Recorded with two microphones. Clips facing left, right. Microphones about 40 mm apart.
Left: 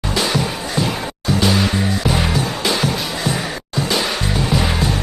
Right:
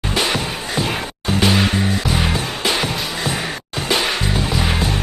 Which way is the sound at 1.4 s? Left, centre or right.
Right.